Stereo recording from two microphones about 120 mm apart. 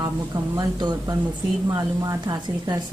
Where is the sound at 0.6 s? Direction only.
35° right (ahead or behind).